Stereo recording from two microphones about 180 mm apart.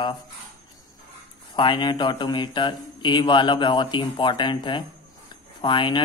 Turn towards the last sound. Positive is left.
turn(degrees=25)  # may be behind; listen again after turning